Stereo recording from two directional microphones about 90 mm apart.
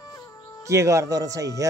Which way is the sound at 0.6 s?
35° right (ahead or behind).